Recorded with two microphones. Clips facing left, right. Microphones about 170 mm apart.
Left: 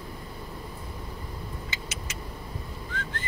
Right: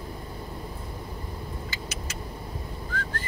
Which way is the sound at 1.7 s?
20° left (ahead or behind).